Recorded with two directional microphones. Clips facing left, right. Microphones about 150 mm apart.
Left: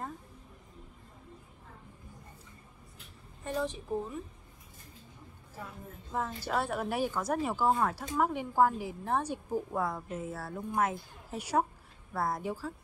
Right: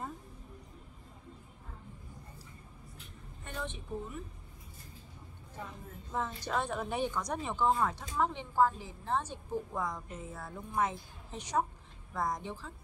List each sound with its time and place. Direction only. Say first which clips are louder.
3.6 s a woman's voice: left 6 dB; 35° left (ahead or behind)
5.6 s a woman's voice: even; 5° left (ahead or behind)